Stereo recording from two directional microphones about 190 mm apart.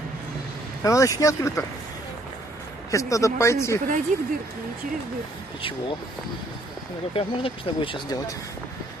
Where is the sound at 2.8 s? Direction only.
15° left (ahead or behind).